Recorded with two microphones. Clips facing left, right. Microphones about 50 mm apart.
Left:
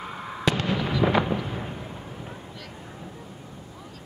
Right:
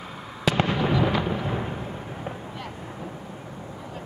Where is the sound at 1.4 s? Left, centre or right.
Right.